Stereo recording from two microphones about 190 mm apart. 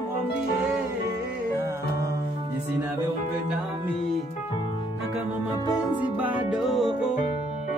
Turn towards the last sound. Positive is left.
turn(degrees=0)  # may be behind; listen again after turning